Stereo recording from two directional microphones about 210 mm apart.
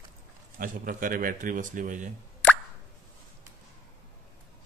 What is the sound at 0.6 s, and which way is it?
Speech, 40° right (ahead or behind).